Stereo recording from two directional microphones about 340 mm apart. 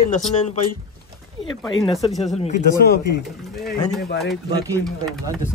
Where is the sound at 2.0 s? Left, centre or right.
Centre.